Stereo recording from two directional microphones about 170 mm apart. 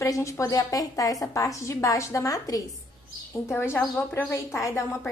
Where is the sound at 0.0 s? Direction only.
20° left (ahead or behind).